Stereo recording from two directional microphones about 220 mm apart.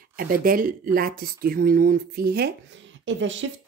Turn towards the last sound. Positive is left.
turn(degrees=-60)  # may be behind; listen again after turning